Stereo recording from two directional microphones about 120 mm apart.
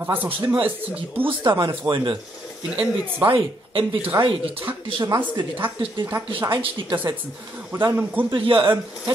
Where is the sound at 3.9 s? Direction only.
15° right (ahead or behind).